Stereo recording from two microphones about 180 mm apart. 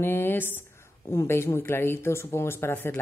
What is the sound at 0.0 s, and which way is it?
Speech, 10° left (ahead or behind).